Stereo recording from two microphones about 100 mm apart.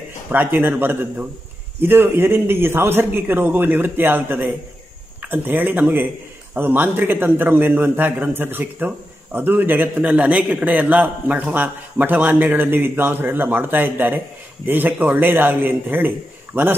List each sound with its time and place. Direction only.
0.3 s a man's voice: 20° right (ahead or behind)